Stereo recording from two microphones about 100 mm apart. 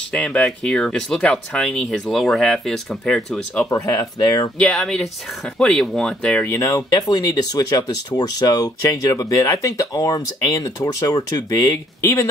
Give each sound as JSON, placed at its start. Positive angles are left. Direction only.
{"t": 0.1, "sound": "speech", "side_deg": 10}
{"t": 3.7, "sound": "speech", "side_deg": 35}
{"t": 4.6, "sound": "speech", "side_deg": 5}
{"t": 6.4, "sound": "speech", "side_deg": 30}
{"t": 12.0, "sound": "speech", "side_deg": 25}